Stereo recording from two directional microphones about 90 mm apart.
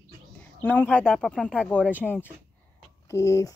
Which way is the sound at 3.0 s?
35° left (ahead or behind).